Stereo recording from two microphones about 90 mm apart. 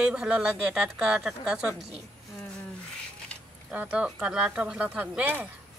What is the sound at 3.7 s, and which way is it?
Speech, 15° right (ahead or behind).